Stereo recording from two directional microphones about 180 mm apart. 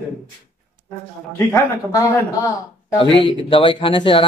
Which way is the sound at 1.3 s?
15° left (ahead or behind).